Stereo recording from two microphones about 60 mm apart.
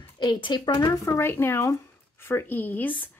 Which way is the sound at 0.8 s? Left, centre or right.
Left.